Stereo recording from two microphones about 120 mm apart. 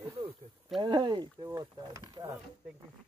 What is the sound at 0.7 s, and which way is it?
Speech, 40° right (ahead or behind).